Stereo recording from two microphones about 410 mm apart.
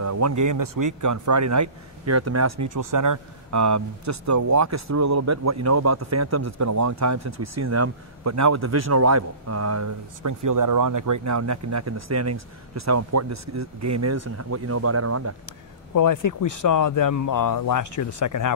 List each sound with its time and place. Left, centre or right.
0.0 s speech: right
15.9 s speech: left